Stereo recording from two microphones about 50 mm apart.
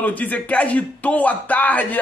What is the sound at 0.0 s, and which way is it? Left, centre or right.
A man's voice, left.